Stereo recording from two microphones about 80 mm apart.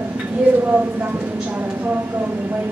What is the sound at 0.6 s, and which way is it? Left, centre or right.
A woman's voice, centre.